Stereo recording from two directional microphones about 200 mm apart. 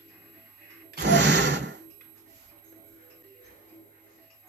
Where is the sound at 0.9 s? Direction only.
60° right (ahead or behind).